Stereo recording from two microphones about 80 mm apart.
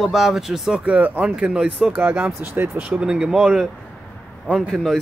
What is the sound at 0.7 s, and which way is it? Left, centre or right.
Speech, centre.